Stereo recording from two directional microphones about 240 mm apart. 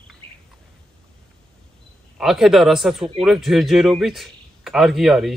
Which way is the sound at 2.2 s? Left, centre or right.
Centre.